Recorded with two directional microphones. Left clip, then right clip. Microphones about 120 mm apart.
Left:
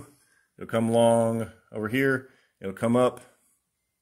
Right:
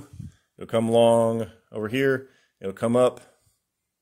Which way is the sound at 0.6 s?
15° right (ahead or behind).